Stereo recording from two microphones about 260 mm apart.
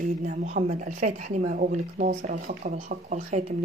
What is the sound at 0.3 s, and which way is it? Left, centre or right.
A woman's voice, right.